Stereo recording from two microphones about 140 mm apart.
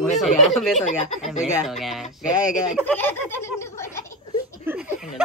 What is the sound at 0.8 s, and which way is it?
Speech, 55° left (ahead or behind).